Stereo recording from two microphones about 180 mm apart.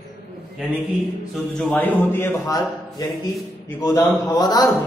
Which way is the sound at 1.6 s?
5° left (ahead or behind).